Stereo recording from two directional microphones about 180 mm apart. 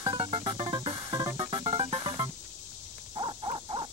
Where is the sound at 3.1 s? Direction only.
25° right (ahead or behind).